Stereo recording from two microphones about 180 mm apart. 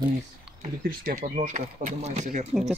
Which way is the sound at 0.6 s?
45° right (ahead or behind).